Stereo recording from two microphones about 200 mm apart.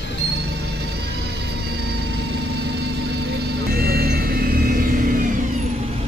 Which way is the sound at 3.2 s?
50° right (ahead or behind).